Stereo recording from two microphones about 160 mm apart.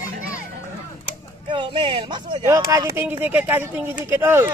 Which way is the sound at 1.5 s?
30° right (ahead or behind).